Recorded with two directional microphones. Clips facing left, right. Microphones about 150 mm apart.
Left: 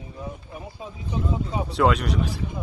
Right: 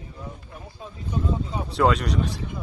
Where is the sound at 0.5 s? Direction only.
15° left (ahead or behind).